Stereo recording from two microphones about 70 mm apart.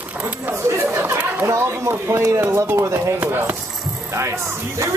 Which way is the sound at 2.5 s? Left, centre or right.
Right.